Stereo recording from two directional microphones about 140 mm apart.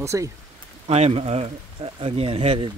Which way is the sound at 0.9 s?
45° right (ahead or behind).